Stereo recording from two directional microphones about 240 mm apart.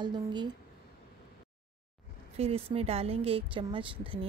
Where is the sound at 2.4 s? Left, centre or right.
Right.